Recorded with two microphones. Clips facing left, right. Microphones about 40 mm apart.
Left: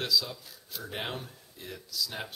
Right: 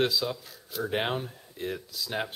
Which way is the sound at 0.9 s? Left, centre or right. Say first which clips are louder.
Right 7 dB; right.